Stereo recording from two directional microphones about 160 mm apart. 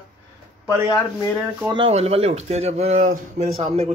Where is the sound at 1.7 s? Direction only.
35° right (ahead or behind).